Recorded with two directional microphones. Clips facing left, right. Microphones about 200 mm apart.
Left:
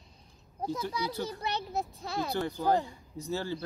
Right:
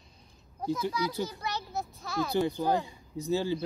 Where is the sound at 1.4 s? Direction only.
30° left (ahead or behind).